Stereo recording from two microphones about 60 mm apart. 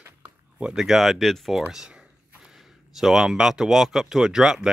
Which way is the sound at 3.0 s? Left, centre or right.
Centre.